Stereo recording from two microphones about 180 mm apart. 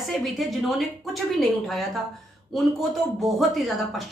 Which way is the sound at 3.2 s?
Centre (ahead or behind).